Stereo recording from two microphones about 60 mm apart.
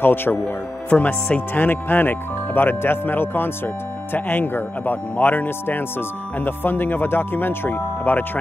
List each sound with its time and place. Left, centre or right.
0.0 s speech: left
0.8 s speech: left
1.5 s speech: left